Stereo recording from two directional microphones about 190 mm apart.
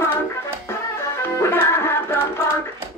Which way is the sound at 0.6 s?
15° left (ahead or behind).